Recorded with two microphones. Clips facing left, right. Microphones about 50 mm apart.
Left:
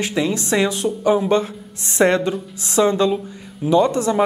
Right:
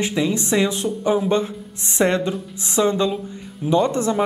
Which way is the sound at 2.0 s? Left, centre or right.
Centre.